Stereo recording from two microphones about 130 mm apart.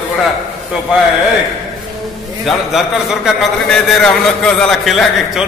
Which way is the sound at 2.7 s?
Centre (ahead or behind).